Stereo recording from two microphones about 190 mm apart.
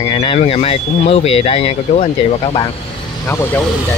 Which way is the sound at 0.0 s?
25° left (ahead or behind).